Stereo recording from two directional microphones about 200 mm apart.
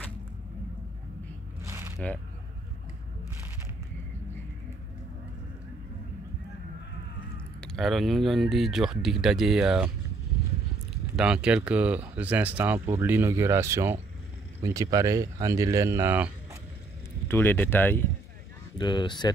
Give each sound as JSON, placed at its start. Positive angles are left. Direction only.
{"t": 1.6, "sound": "a sound", "side_deg": -15}
{"t": 7.6, "sound": "speech", "side_deg": 0}
{"t": 11.1, "sound": "speech", "side_deg": -5}
{"t": 17.3, "sound": "speech", "side_deg": 10}
{"t": 18.8, "sound": "speech", "side_deg": 25}